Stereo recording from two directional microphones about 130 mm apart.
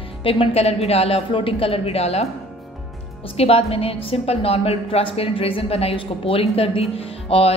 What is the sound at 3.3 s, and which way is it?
A woman's voice, 50° left (ahead or behind).